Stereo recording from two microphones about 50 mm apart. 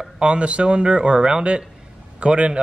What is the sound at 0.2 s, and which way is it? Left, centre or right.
Speech, right.